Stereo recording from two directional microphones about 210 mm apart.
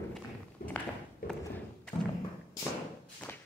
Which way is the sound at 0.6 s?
45° left (ahead or behind).